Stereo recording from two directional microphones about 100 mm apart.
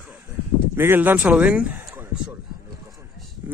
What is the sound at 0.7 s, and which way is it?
Speech, 25° right (ahead or behind).